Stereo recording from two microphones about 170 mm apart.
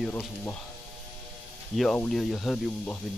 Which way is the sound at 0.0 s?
5° left (ahead or behind).